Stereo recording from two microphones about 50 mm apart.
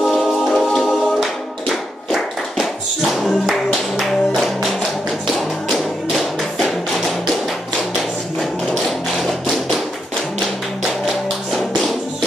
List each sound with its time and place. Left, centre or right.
0.2 s music: centre
5.7 s music: centre